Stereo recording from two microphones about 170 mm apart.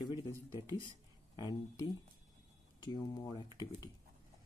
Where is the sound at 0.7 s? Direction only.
25° left (ahead or behind).